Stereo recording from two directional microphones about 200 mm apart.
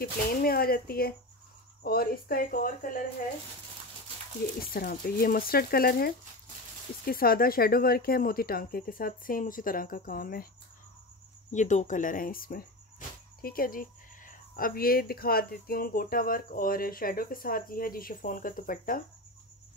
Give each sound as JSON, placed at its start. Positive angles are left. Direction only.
{"t": 0.0, "sound": "speech", "side_deg": 50}
{"t": 4.6, "sound": "speech", "side_deg": 45}
{"t": 11.5, "sound": "speech", "side_deg": 35}